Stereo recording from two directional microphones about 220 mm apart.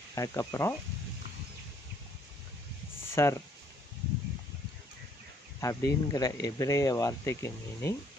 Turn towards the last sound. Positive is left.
turn(degrees=10)  # may be behind; listen again after turning